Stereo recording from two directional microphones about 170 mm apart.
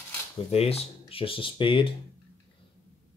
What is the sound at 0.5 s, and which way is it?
Speech, 35° left (ahead or behind).